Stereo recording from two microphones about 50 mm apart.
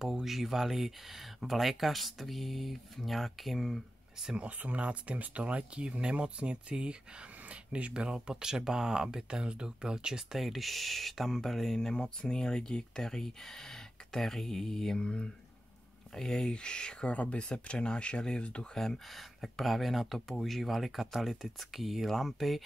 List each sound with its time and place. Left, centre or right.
0.0 s speech: centre
4.4 s speech: right; by 18.7 s left
18.8 s speech: centre